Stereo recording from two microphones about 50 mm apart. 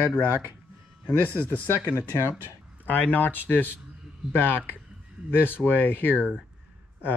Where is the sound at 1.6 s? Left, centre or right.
Left.